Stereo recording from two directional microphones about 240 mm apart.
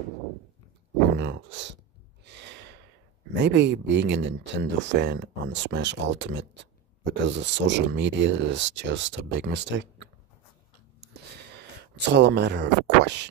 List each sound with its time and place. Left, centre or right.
1.1 s a sound: right
2.2 s gasp: right
3.4 s speech: right
12.1 s speech: right